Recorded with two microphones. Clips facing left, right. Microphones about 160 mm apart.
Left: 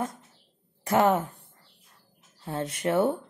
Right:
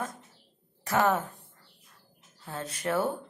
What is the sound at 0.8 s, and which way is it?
Speech, 25° left (ahead or behind).